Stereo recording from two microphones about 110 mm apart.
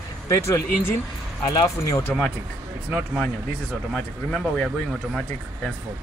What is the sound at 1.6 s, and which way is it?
Speech, 30° left (ahead or behind).